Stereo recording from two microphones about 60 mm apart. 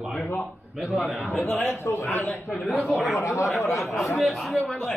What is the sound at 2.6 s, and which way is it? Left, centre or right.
Speech, centre.